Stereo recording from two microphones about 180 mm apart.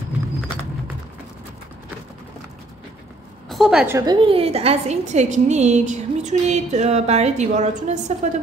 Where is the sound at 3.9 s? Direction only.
20° right (ahead or behind).